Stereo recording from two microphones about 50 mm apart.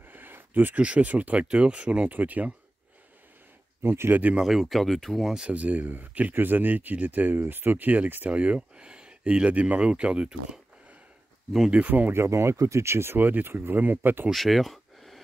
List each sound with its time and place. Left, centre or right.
0.0 s a sound: right
0.7 s speech: right
3.8 s speech: right
4.1 s speech: right
4.4 s speech: centre
5.5 s speech: right
7.3 s speech: right
11.8 s speech: right
12.3 s speech: right
14.3 s speech: centre